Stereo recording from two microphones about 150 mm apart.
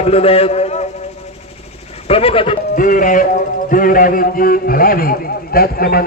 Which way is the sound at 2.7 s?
65° left (ahead or behind).